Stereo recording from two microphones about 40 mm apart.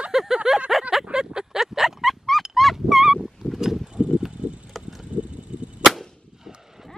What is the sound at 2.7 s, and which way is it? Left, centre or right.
Goose, centre.